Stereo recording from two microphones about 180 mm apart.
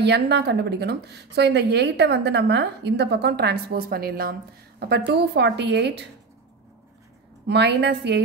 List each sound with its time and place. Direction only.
0.0 s speech: 70° right (ahead or behind)
7.4 s speech: 70° right (ahead or behind)